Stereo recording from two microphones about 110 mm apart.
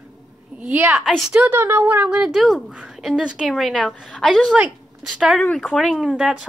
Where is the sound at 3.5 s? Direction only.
5° left (ahead or behind).